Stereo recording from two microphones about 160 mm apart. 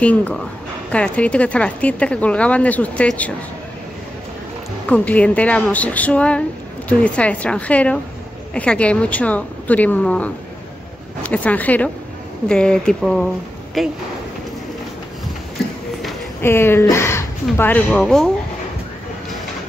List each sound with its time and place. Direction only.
0.0 s speech: 10° left (ahead or behind)
4.8 s speech: 10° left (ahead or behind)
16.3 s speech: 15° left (ahead or behind)